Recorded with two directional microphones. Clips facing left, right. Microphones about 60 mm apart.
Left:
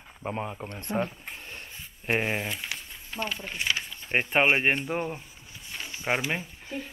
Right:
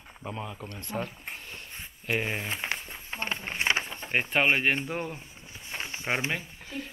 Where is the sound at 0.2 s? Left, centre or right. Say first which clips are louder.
Left 4 dB; left.